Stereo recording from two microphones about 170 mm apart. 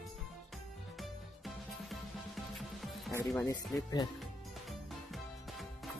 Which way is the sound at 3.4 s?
20° left (ahead or behind).